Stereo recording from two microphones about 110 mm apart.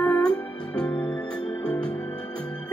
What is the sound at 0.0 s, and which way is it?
Music, 15° left (ahead or behind).